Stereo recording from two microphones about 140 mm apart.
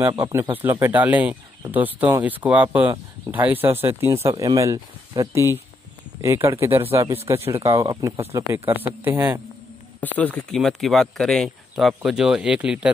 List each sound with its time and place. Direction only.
0.1 s speech: 20° right (ahead or behind)
10.1 s speech: 10° left (ahead or behind); by 12.9 s 10° right (ahead or behind)